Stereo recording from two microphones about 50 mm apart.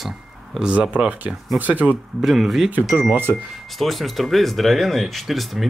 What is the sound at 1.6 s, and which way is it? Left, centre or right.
Speech, right.